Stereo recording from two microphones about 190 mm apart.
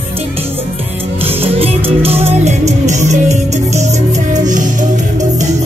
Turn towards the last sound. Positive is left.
turn(degrees=-40)  # may be behind; listen again after turning